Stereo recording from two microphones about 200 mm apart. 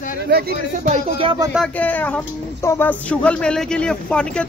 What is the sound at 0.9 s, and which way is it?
Speech, 25° right (ahead or behind).